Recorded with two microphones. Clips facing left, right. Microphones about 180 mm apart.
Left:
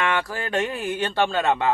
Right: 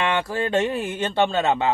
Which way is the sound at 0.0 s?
25° right (ahead or behind).